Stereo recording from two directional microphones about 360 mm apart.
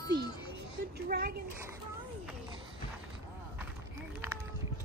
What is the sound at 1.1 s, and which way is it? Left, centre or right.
Speech, right.